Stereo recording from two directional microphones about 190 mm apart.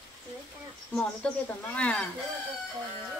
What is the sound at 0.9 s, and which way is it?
Speech, 5° left (ahead or behind).